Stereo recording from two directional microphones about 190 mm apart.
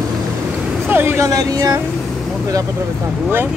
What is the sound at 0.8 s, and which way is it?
Speech, 10° right (ahead or behind).